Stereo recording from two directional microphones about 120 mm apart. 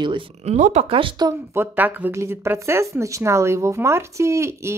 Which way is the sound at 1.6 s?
15° right (ahead or behind).